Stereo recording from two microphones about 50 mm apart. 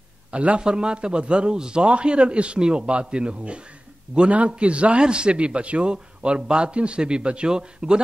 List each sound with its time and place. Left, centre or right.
0.3 s a man's voice: right
0.6 s a man's voice: centre